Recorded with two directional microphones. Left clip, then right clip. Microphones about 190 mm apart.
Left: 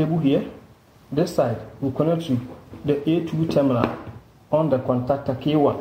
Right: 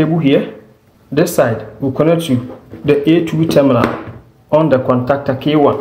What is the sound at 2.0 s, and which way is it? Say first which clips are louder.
Speech: right 10 dB; 5° right (ahead or behind).